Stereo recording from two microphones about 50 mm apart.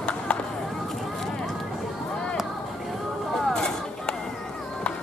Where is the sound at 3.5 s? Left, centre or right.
Centre.